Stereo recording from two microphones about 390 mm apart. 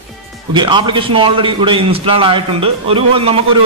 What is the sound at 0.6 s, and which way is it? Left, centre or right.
A man's voice, centre.